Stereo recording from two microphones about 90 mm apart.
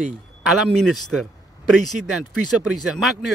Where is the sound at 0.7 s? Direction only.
5° left (ahead or behind).